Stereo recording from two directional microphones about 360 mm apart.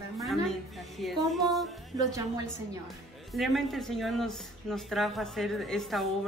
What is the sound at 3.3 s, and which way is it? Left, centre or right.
Speech, centre.